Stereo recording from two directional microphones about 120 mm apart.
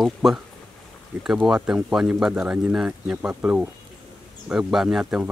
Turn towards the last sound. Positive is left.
turn(degrees=-5)  # may be behind; listen again after turning